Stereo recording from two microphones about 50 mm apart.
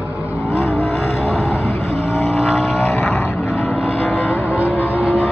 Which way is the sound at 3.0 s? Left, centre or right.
Centre.